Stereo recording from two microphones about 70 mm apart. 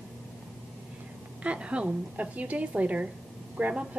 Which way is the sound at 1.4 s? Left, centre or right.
Centre.